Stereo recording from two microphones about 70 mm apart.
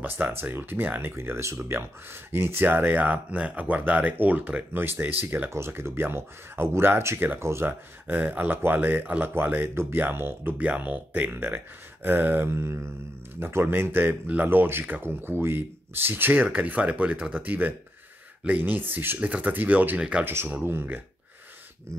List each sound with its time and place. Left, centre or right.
0.0 s speech: right
8.1 s speech: right
10.6 s speech: right
20.6 s speech: right